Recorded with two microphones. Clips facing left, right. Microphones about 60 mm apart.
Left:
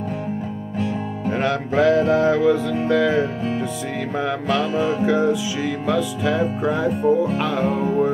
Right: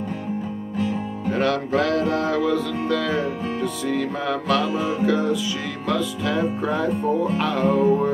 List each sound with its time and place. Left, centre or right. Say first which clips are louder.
1.3 s music: even; centre